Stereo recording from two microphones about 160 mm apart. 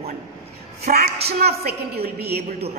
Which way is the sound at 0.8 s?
75° right (ahead or behind).